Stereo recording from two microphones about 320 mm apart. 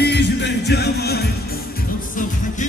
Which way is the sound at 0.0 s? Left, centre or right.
Left.